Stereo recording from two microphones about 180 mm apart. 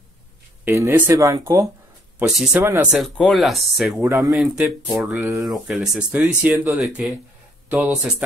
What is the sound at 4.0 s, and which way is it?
Speech, 15° right (ahead or behind).